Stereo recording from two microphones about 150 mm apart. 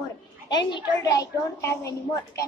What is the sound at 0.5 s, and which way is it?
A woman's voice, 30° left (ahead or behind).